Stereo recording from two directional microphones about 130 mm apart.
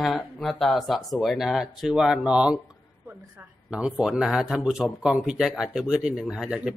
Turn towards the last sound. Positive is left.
turn(degrees=-5)  # may be behind; listen again after turning